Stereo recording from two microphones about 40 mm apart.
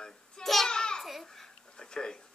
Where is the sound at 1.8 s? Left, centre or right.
Centre.